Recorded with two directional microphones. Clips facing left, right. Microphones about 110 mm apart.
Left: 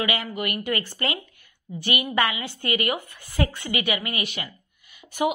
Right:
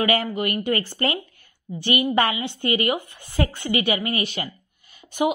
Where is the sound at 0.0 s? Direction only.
40° right (ahead or behind).